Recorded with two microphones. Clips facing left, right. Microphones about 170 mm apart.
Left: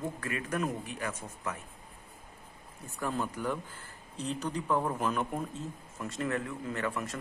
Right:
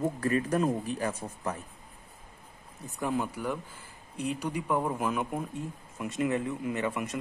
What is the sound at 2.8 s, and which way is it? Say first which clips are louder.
Speech: right 3 dB; 15° right (ahead or behind).